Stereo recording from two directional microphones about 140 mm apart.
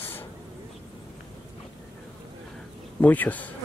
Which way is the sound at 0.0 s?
15° left (ahead or behind).